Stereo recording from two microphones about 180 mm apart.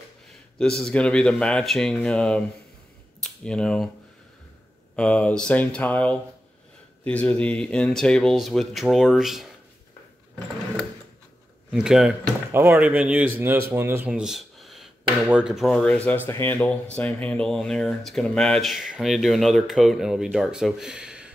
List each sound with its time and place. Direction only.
0.6 s speech: 5° left (ahead or behind)
4.9 s speech: 5° left (ahead or behind)
11.7 s speech: 5° right (ahead or behind)